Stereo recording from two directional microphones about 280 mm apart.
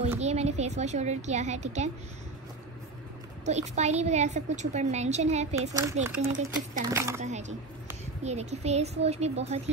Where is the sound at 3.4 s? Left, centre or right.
Right.